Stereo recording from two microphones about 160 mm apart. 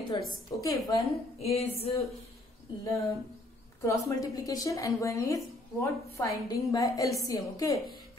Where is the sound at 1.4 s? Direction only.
40° left (ahead or behind).